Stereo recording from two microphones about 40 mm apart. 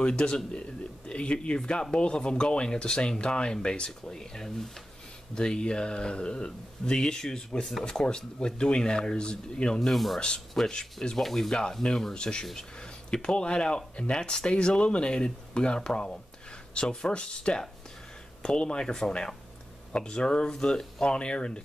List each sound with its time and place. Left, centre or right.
0.0 s speech: left
0.6 s a sound: left
2.0 s speech: left
3.6 s a sound: left
5.3 s speech: left
9.8 s speech: centre
10.1 s speech: left
11.1 s speech: centre